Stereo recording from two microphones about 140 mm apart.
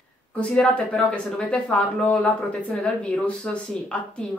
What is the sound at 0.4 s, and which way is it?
Speech, 5° left (ahead or behind).